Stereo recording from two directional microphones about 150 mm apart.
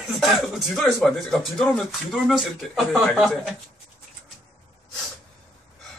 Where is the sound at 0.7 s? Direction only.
Centre (ahead or behind).